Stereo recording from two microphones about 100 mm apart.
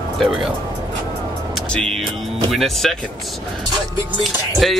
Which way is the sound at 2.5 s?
Centre (ahead or behind).